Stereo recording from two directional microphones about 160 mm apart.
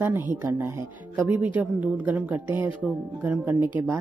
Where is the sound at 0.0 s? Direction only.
10° right (ahead or behind).